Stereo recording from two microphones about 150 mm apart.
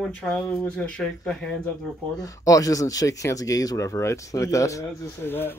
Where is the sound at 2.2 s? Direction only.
25° left (ahead or behind).